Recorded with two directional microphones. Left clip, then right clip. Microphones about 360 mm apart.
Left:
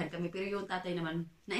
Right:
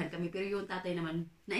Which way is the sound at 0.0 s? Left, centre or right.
Centre.